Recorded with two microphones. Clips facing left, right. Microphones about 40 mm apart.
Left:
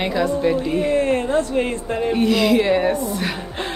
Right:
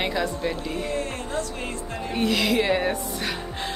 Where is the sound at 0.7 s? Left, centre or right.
Left.